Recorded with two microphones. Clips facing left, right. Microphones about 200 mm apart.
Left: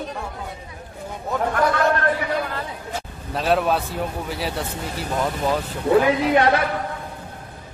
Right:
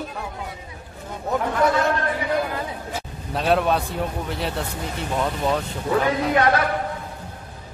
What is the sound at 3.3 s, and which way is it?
Speech, centre (ahead or behind).